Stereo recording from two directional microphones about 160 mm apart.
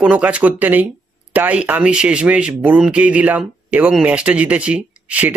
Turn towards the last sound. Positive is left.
turn(degrees=-10)  # may be behind; listen again after turning